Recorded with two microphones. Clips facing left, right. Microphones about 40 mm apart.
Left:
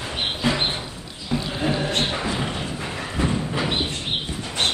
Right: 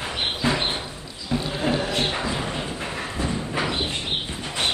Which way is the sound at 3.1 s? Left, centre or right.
Left.